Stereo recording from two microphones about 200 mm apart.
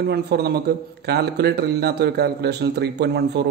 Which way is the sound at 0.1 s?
55° right (ahead or behind).